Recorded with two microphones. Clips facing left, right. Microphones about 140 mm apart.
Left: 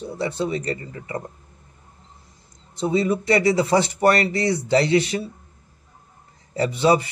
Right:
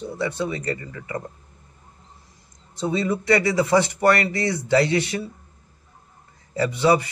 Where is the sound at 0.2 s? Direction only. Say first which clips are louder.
Left 2 dB; 25° left (ahead or behind).